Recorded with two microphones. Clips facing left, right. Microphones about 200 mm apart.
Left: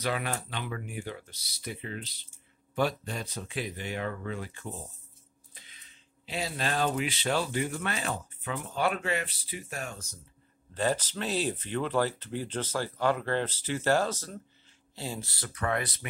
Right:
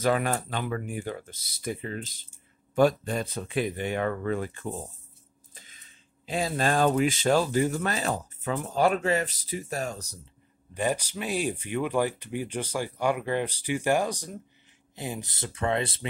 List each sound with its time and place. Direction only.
0.0 s speech: 45° right (ahead or behind)
5.5 s a sound: 45° right (ahead or behind)
6.2 s speech: 50° right (ahead or behind)
10.7 s speech: 15° right (ahead or behind)